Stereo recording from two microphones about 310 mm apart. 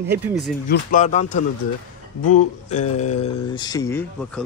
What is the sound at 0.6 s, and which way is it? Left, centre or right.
Speech, left.